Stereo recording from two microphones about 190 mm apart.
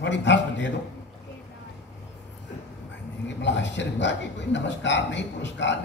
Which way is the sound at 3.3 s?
70° left (ahead or behind).